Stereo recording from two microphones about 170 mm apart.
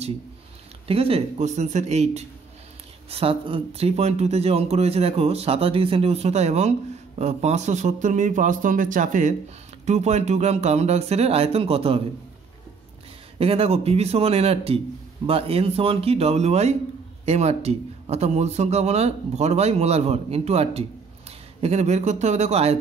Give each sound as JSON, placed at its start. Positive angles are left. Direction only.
{"t": 0.8, "sound": "speech", "side_deg": -35}
{"t": 13.4, "sound": "speech", "side_deg": -35}